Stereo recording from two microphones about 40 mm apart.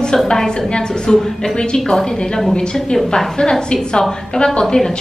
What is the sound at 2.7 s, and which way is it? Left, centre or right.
A woman's voice, centre.